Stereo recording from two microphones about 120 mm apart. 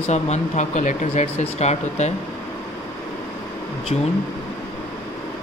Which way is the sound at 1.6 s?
65° left (ahead or behind).